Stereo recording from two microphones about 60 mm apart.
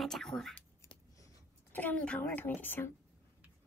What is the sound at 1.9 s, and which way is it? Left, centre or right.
Speech, centre.